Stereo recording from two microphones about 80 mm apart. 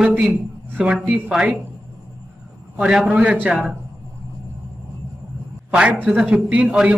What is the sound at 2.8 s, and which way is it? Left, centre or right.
Speech, centre.